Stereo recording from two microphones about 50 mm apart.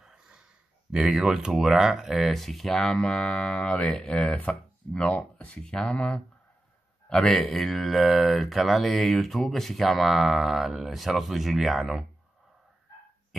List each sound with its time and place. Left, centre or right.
0.0 s sigh: centre
0.9 s speech: centre
2.3 s speech: centre
2.9 s speech: centre
4.3 s speech: left
7.2 s speech: centre